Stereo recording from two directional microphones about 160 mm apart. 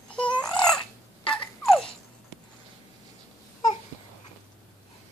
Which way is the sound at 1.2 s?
5° left (ahead or behind).